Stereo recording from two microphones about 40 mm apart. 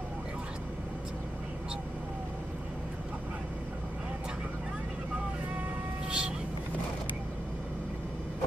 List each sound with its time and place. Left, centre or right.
6.0 s vehicle: right